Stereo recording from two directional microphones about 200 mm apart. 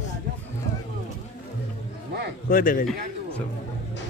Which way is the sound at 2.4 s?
45° left (ahead or behind).